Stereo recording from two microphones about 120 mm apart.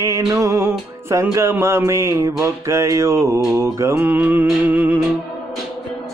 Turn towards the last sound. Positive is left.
turn(degrees=-15)  # may be behind; listen again after turning